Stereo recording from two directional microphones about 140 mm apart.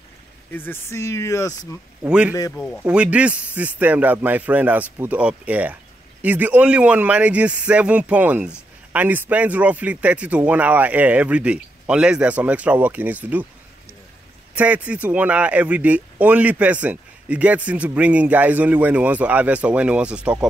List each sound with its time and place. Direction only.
0.5 s speech: 15° left (ahead or behind)
2.0 s speech: 5° right (ahead or behind)
2.5 s speech: 5° left (ahead or behind)
2.8 s speech: 10° right (ahead or behind)
14.5 s speech: 10° right (ahead or behind)